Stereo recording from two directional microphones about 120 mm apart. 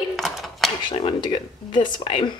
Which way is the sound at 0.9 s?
45° left (ahead or behind).